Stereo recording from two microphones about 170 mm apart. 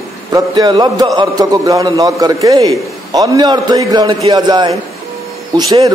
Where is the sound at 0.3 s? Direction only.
25° right (ahead or behind).